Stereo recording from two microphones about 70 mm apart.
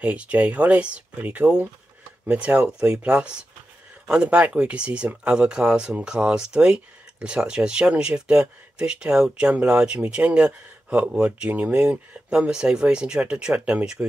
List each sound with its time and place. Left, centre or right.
0.0 s speech: centre